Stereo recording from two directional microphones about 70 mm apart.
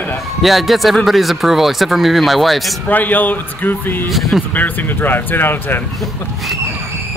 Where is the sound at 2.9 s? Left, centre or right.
Left.